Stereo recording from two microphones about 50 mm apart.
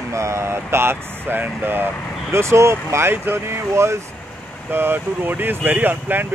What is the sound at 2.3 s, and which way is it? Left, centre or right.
Speech, right.